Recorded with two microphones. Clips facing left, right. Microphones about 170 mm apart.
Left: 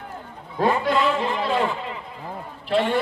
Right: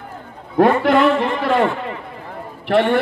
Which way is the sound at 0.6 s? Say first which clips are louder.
Right 7 dB; 65° right (ahead or behind).